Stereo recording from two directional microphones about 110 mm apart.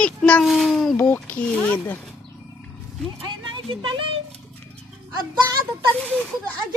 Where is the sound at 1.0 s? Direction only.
20° left (ahead or behind).